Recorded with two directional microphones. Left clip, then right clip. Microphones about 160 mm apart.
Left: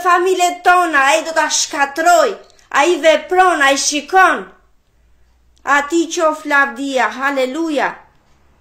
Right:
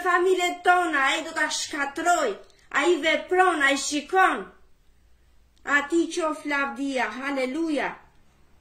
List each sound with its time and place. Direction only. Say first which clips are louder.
0.0 s a woman's voice: left 9 dB; 25° right (ahead or behind)
5.6 s a woman's voice: left 9 dB; 20° right (ahead or behind)